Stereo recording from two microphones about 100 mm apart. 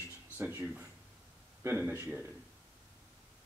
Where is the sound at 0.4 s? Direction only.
20° right (ahead or behind).